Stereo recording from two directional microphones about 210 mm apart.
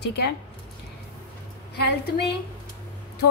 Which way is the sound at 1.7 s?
50° left (ahead or behind).